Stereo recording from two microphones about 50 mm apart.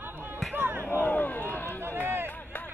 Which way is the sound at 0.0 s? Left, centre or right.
Right.